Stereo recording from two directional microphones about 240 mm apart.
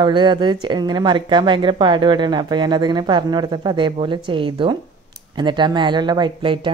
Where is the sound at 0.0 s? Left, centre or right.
Centre.